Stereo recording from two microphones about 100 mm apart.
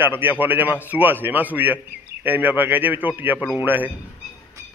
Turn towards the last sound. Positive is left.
turn(degrees=-20)  # may be behind; listen again after turning